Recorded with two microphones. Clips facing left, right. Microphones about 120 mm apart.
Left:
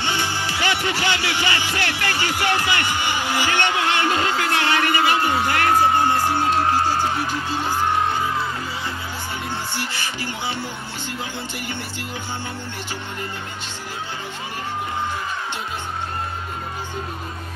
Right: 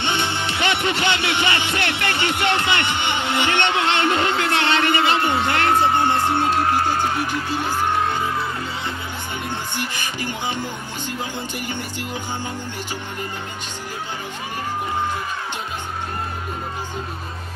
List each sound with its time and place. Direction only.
0.0 s music: 20° right (ahead or behind)
9.8 s music: 15° right (ahead or behind)